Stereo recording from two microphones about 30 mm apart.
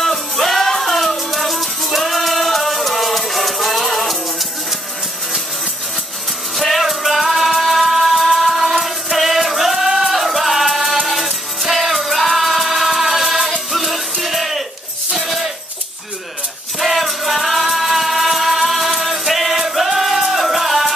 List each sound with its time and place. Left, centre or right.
0.0 s music: centre
6.5 s music: centre
14.2 s a sound: centre
16.8 s music: centre